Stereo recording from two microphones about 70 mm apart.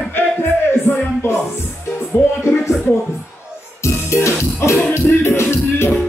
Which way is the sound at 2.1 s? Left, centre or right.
Left.